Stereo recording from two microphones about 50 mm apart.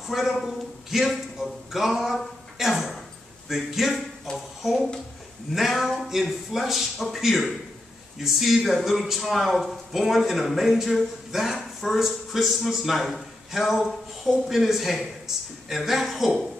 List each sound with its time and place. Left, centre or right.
0.0 s a man's voice: centre
4.3 s speech: centre
5.5 s speech: centre